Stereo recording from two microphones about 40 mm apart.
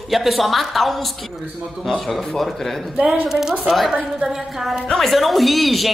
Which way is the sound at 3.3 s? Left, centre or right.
Centre.